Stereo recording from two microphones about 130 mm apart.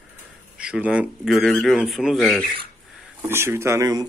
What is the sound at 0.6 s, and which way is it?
Speech, 10° right (ahead or behind).